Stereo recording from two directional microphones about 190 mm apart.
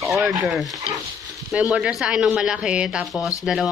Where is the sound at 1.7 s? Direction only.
5° right (ahead or behind).